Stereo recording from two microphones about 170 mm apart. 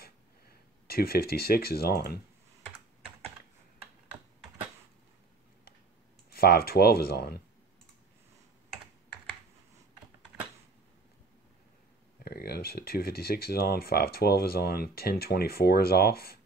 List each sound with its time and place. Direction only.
0.0 s a sound: 60° left (ahead or behind)
6.3 s speech: 65° left (ahead or behind)
12.3 s speech: 65° left (ahead or behind)